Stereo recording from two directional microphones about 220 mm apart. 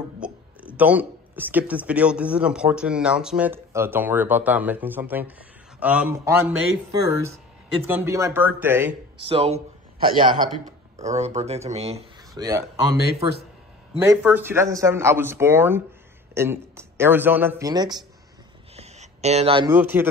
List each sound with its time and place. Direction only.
0.2 s speech: 5° right (ahead or behind)
7.8 s speech: 10° right (ahead or behind)
9.3 s speech: 25° right (ahead or behind)
9.9 s a man's voice: 40° right (ahead or behind)
11.0 s speech: 30° right (ahead or behind)
13.0 s speech: 45° left (ahead or behind)
13.9 s speech: 10° right (ahead or behind)
18.8 s a sound: 30° right (ahead or behind)
19.7 s speech: 10° right (ahead or behind)